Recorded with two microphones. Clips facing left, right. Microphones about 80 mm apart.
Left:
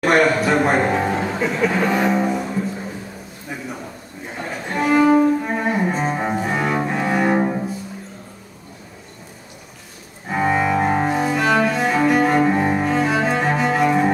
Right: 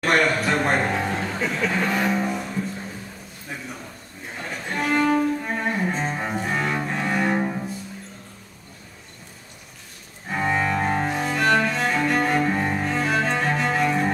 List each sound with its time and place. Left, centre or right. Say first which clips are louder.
0.0 s speech: left 5 dB; centre
4.3 s music: left 4 dB; centre
6.8 s cello: left 5 dB; centre
7.3 s music: left 5 dB; centre
10.2 s cello: left 5 dB; centre